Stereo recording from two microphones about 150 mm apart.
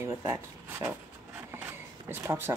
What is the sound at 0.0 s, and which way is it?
Speech, 15° right (ahead or behind).